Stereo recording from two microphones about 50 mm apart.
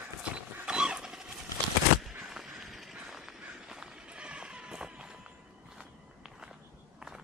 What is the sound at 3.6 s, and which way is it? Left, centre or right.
Run, centre.